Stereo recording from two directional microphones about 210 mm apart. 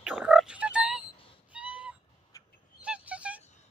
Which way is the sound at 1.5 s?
5° right (ahead or behind).